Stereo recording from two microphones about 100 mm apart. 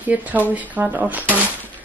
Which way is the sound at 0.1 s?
15° right (ahead or behind).